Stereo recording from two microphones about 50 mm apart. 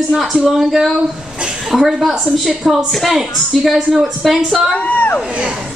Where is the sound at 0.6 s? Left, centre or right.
Centre.